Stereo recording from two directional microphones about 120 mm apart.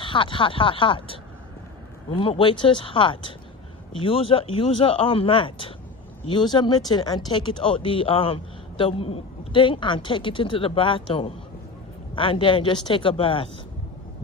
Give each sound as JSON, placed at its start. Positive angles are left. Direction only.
{"t": 0.0, "sound": "speech", "side_deg": 45}
{"t": 2.1, "sound": "speech", "side_deg": 45}